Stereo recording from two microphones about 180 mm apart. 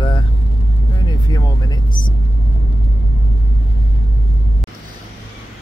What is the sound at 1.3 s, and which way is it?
Vehicle, 20° left (ahead or behind).